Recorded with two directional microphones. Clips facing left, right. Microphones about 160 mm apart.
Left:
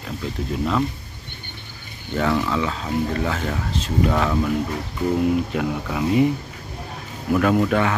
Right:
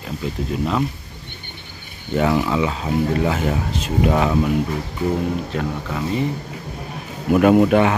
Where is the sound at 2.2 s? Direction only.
15° right (ahead or behind).